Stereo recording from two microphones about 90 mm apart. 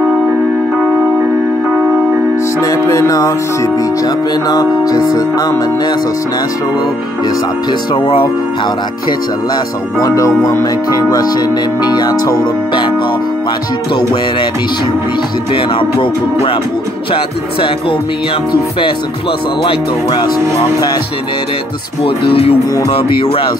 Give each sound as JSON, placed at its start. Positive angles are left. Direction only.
{"t": 2.6, "sound": "speech", "side_deg": 40}
{"t": 7.9, "sound": "speech", "side_deg": 70}
{"t": 10.0, "sound": "speech", "side_deg": 40}
{"t": 10.4, "sound": "music", "side_deg": 40}
{"t": 15.5, "sound": "speech", "side_deg": 65}
{"t": 17.1, "sound": "speech", "side_deg": 80}
{"t": 18.5, "sound": "music", "side_deg": 65}
{"t": 22.0, "sound": "speech", "side_deg": 90}
{"t": 22.8, "sound": "speech", "side_deg": 70}